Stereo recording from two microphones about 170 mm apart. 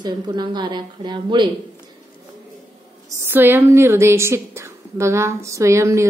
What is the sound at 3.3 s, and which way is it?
A woman's voice, 10° right (ahead or behind).